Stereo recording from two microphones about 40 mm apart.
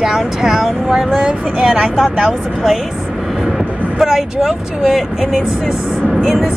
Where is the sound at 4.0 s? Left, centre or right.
Centre.